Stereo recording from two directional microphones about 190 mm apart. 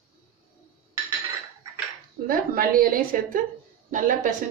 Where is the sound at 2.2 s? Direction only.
50° right (ahead or behind).